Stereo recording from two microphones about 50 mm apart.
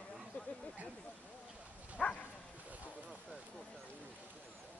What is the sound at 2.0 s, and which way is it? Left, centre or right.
Bow-wow, centre.